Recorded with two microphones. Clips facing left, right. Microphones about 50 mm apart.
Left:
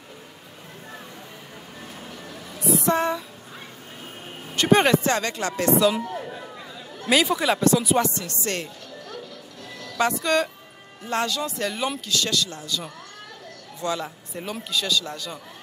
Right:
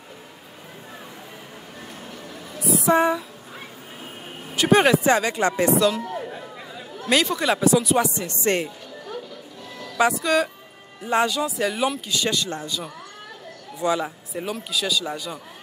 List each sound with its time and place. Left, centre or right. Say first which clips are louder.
2.0 s music: right 1 dB; centre
2.9 s speech: right 6 dB; centre
4.5 s speech: right 1 dB; centre
5.0 s speech: right 5 dB; centre
6.0 s a sound: right 1 dB; centre
6.7 s speech: even; centre
8.2 s a man's voice: right 6 dB; right
8.6 s a sound: right 3 dB; centre
9.8 s speech: right 3 dB; centre
11.1 s speech: right 4 dB; centre
12.1 s a man's voice: right 1 dB; centre
13.7 s speech: right 5 dB; centre
14.3 s speech: even; centre